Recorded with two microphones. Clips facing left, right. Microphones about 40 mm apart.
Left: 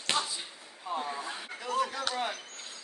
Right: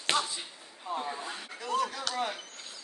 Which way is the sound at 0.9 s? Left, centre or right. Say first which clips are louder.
Even; centre.